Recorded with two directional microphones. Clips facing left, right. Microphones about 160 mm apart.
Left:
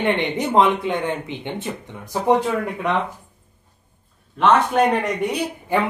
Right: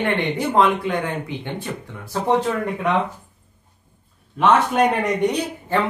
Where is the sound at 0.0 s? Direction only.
20° left (ahead or behind).